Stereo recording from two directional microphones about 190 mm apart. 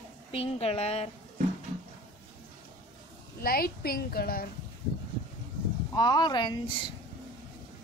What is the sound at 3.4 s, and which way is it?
A woman's voice, 50° left (ahead or behind).